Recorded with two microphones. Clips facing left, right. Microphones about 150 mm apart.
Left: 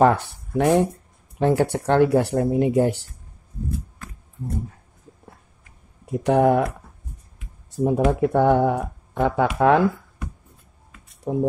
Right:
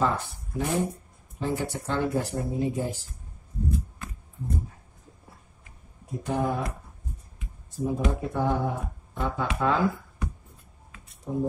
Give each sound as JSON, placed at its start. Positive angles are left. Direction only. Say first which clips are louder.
{"t": 0.0, "sound": "speech", "louder": "left 9 dB", "side_deg": 70}
{"t": 6.2, "sound": "speech", "louder": "left 10 dB", "side_deg": 75}
{"t": 7.7, "sound": "speech", "louder": "left 8 dB", "side_deg": 65}
{"t": 11.3, "sound": "speech", "louder": "left 6 dB", "side_deg": 70}